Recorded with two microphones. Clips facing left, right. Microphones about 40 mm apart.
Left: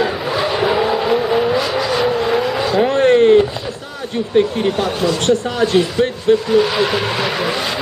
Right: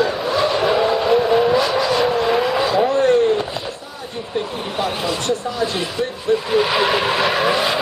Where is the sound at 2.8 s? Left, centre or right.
Left.